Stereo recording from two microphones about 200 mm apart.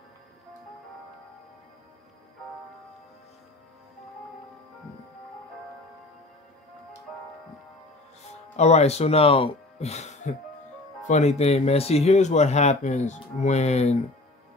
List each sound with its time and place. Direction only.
8.5 s speech: 35° left (ahead or behind)